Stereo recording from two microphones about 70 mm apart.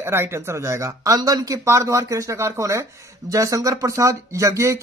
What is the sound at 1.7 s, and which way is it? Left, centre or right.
Speech, right.